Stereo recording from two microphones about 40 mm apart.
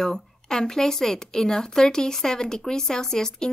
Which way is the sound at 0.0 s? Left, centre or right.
Centre.